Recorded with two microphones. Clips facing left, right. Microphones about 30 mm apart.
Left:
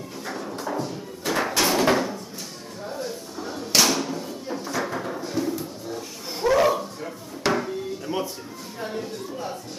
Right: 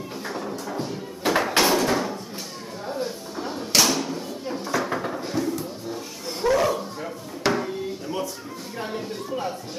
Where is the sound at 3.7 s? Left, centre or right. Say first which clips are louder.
Even; centre.